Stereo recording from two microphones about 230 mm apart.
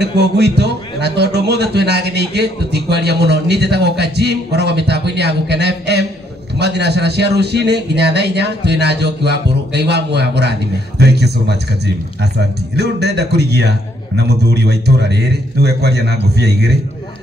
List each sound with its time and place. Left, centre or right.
0.0 s a man's voice: right